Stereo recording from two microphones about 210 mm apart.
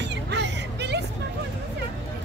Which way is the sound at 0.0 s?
55° right (ahead or behind).